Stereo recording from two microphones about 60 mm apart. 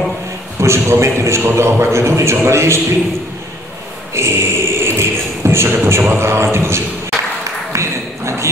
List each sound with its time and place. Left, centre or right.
0.6 s a man's voice: right
4.1 s beatboxing: right
7.7 s a sound: right